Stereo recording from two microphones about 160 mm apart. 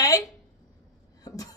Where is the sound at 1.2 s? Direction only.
20° left (ahead or behind).